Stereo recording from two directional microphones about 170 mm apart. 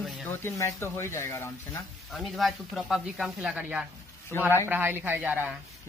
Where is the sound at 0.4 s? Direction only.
15° left (ahead or behind).